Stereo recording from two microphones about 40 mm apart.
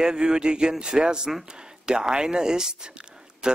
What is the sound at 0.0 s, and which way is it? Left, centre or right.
Speech, centre.